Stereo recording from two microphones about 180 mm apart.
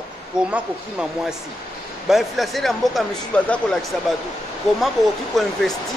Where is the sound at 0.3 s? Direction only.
5° right (ahead or behind).